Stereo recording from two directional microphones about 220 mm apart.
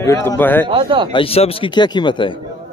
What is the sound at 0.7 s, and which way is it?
Speech, 20° right (ahead or behind).